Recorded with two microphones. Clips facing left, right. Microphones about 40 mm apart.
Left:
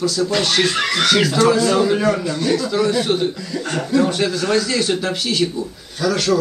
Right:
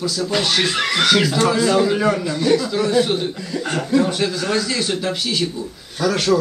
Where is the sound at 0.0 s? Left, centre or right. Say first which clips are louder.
Left 2 dB; centre.